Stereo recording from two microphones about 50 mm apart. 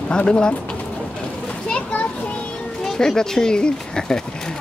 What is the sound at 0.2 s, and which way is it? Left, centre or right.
Speech, left.